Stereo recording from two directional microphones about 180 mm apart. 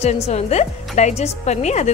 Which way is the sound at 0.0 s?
35° left (ahead or behind).